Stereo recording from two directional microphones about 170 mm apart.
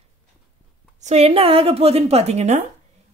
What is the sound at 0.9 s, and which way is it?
A woman's voice, 40° right (ahead or behind).